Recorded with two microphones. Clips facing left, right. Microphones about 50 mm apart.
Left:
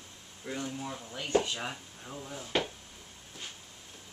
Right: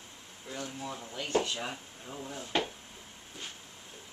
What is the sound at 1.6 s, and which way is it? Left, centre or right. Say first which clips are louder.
Speech: even; centre.